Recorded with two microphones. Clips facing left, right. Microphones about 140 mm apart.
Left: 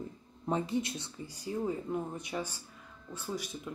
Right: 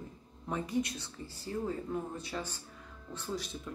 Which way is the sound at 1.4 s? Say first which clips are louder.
Left 2 dB; 15° left (ahead or behind).